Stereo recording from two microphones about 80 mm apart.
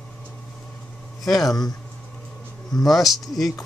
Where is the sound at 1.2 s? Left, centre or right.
Centre.